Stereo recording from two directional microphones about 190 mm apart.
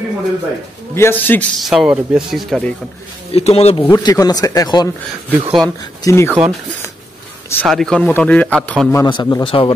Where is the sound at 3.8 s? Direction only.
20° left (ahead or behind).